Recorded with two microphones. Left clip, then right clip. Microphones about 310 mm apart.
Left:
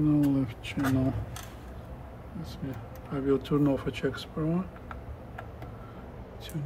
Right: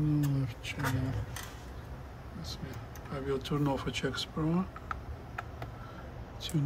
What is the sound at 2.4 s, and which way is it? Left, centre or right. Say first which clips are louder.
Speech: left 3 dB; centre.